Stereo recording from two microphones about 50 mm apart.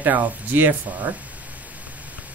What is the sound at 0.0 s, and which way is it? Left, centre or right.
Speech, right.